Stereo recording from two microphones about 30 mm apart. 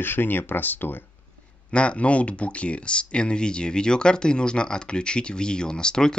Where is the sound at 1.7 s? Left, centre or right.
Left.